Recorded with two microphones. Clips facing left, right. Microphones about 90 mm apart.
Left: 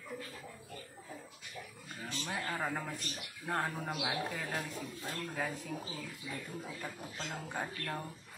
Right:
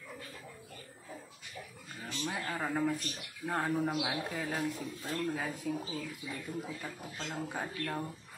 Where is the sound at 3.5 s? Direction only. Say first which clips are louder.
Right 4 dB; centre (ahead or behind).